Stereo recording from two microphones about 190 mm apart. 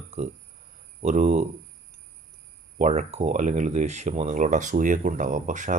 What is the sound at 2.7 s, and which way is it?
Speech, 35° right (ahead or behind).